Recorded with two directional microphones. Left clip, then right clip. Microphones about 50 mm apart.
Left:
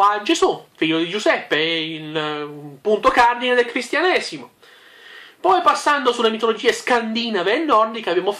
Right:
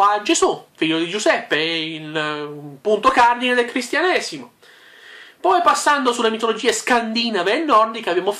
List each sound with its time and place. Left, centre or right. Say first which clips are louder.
0.0 s speech: even; right
3.9 s speech: even; centre
5.4 s speech: even; centre
5.7 s speech: right 1 dB; right